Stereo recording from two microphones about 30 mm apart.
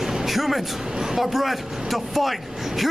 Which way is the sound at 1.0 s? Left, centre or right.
Centre.